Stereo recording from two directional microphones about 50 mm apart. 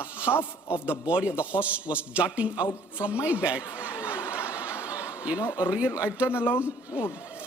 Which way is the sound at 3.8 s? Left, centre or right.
Right.